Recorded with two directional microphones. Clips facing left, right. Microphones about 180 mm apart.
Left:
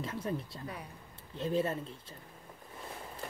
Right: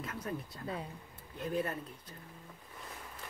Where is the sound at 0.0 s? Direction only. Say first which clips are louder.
Left 4 dB; 30° left (ahead or behind).